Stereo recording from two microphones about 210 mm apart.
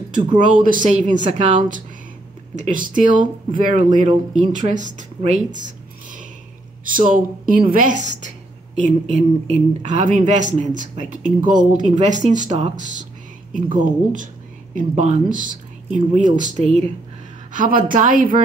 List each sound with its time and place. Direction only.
0.5 s speech: 40° right (ahead or behind)
2.9 s speech: 40° right (ahead or behind)
6.8 s speech: 40° right (ahead or behind)